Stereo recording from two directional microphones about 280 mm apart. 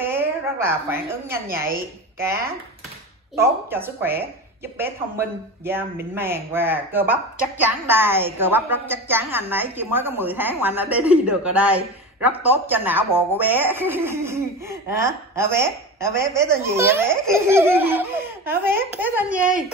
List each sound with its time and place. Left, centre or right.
0.0 s a sound: centre
1.3 s speech: centre
3.3 s speech: centre